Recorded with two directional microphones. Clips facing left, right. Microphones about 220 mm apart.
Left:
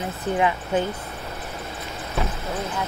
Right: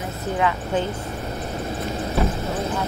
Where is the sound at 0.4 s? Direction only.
20° left (ahead or behind).